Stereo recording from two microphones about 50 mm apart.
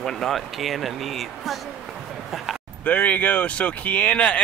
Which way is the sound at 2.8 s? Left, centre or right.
Left.